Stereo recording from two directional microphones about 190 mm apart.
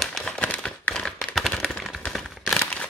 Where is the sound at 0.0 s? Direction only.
Centre (ahead or behind).